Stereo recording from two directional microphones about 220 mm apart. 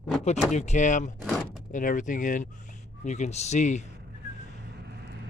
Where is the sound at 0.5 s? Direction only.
35° left (ahead or behind).